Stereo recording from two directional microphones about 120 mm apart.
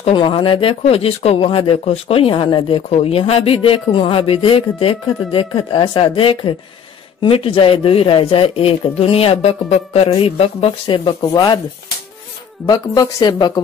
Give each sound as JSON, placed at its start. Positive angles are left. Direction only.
{"t": 0.0, "sound": "speech", "side_deg": 50}
{"t": 2.9, "sound": "speech", "side_deg": 55}
{"t": 11.1, "sound": "speech", "side_deg": 35}
{"t": 12.6, "sound": "speech", "side_deg": 30}